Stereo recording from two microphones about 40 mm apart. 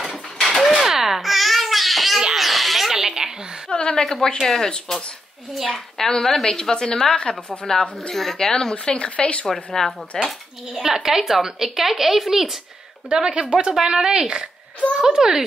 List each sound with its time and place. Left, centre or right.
0.6 s dishes: centre
0.8 s babbling: centre
2.3 s a sound: centre
2.9 s a sound: centre
3.7 s a woman's voice: left; by 4.6 s centre
5.7 s a woman's voice: centre
6.5 s a woman's voice: centre
8.7 s speech: left
9.5 s a woman's voice: centre
10.7 s a woman's voice: centre
13.1 s speech: right